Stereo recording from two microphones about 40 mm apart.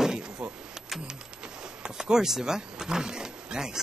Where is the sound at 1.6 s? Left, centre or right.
Centre.